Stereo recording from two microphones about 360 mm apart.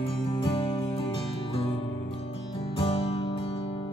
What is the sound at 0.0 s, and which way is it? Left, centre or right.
Music, centre.